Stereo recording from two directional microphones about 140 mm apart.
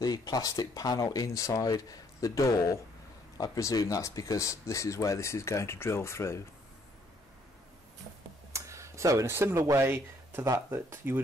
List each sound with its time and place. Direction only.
0.0 s speech: 30° left (ahead or behind)
8.5 s speech: 20° right (ahead or behind)